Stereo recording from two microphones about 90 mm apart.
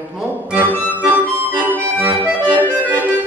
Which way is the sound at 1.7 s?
20° right (ahead or behind).